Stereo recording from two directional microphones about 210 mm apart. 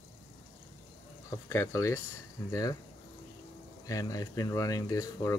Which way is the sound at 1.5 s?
15° left (ahead or behind).